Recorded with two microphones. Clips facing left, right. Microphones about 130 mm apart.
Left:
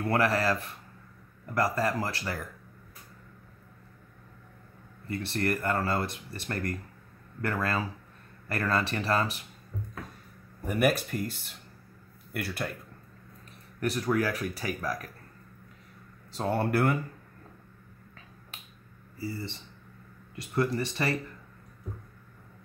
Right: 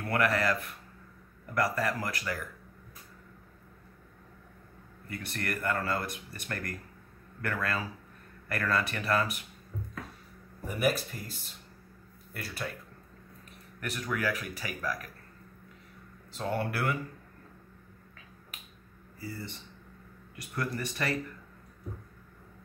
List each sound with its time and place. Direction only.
0.0 s speech: 30° left (ahead or behind)
5.1 s speech: 30° left (ahead or behind)
10.7 s speech: 55° left (ahead or behind)
13.7 s speech: 35° left (ahead or behind)
16.3 s speech: 40° left (ahead or behind)
19.1 s speech: 25° left (ahead or behind)